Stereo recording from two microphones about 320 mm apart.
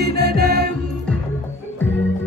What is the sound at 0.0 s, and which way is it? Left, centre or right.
Music, right.